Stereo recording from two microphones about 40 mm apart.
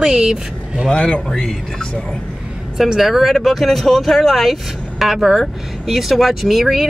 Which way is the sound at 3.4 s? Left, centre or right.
Centre.